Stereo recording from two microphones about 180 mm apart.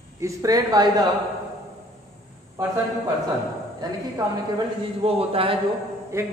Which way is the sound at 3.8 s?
20° right (ahead or behind).